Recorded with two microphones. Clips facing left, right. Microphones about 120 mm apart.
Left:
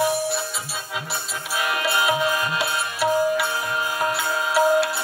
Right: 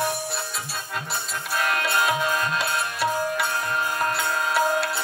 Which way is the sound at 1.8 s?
5° left (ahead or behind).